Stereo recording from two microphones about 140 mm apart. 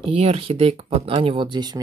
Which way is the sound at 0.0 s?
45° right (ahead or behind).